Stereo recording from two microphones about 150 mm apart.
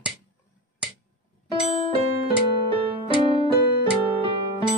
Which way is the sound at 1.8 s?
40° right (ahead or behind).